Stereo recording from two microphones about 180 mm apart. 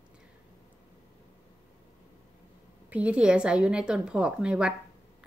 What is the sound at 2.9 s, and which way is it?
A woman's voice, 5° right (ahead or behind).